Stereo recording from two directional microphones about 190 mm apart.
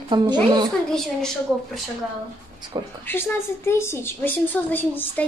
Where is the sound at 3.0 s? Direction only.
10° left (ahead or behind).